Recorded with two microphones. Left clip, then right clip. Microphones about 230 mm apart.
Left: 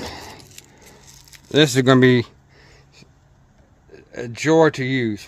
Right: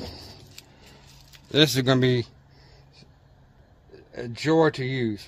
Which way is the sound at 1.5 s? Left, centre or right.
Left.